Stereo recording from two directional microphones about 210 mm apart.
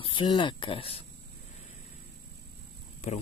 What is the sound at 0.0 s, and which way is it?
Speech, 25° left (ahead or behind).